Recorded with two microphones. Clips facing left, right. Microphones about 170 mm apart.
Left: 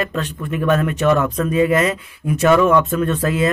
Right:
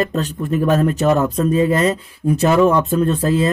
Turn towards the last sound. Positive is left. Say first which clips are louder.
# right 2 dB
turn(degrees=-30)  # may be behind; listen again after turning